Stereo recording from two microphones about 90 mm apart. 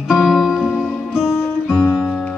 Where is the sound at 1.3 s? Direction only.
20° left (ahead or behind).